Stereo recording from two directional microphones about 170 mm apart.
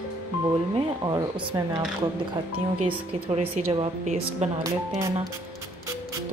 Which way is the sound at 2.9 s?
35° right (ahead or behind).